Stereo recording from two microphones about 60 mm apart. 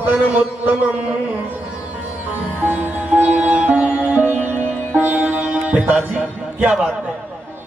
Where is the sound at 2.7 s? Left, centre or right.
Right.